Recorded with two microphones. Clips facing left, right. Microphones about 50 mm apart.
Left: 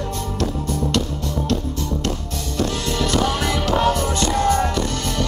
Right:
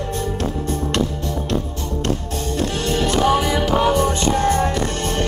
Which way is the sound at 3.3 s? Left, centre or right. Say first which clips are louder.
Right 4 dB; centre.